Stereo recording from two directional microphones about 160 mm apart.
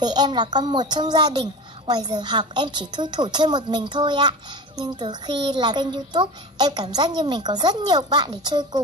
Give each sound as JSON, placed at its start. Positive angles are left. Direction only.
{"t": 0.0, "sound": "a woman's voice", "side_deg": -25}